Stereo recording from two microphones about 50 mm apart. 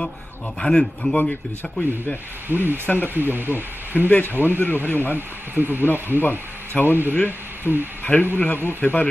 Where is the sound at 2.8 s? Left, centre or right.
Left.